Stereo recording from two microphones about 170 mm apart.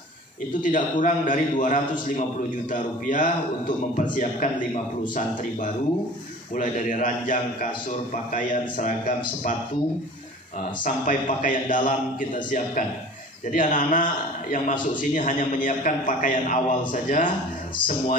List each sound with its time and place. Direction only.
0.6 s a man's voice: 50° left (ahead or behind)
6.5 s a man's voice: 50° left (ahead or behind)
10.8 s a man's voice: 50° left (ahead or behind)